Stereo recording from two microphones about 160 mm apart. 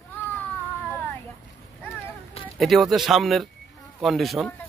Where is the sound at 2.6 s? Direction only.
Centre (ahead or behind).